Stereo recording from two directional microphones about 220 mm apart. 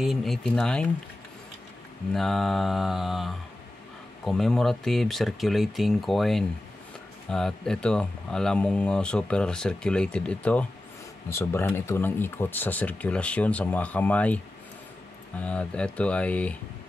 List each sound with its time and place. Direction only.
0.0 s speech: centre (ahead or behind)
2.1 s speech: centre (ahead or behind)
15.4 s speech: 5° left (ahead or behind)